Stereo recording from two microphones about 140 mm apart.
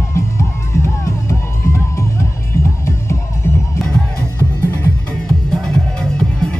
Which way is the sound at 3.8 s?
10° left (ahead or behind).